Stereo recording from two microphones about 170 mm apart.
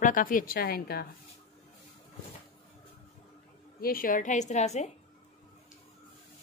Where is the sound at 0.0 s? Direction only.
50° left (ahead or behind).